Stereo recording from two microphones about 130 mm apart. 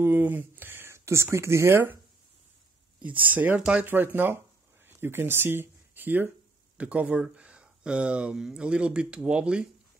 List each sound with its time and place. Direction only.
0.0 s speech: 15° right (ahead or behind)
3.0 s speech: 10° right (ahead or behind)